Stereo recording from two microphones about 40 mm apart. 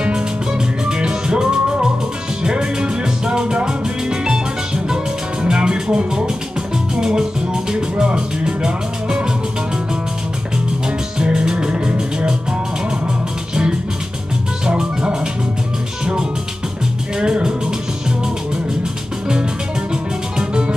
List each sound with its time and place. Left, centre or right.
0.0 s music: right
11.1 s music: centre
14.7 s music: right
17.2 s music: right
19.9 s music: right